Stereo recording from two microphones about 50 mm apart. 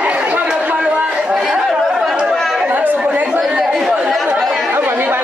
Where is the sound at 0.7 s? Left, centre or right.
Right.